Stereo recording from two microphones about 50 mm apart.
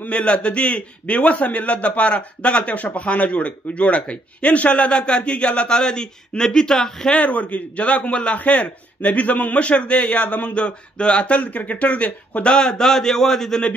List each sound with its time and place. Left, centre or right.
0.1 s a man's voice: left
7.2 s a man's voice: left
12.4 s a man's voice: centre